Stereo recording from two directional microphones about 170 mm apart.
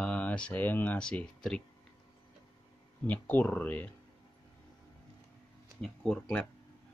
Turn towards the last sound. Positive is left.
turn(degrees=5)  # may be behind; listen again after turning